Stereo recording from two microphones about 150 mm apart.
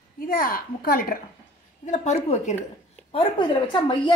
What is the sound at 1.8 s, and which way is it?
Speech, 50° left (ahead or behind).